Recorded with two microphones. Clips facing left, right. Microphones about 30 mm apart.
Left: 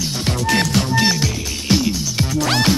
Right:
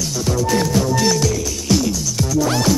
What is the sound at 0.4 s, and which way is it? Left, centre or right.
Music, left.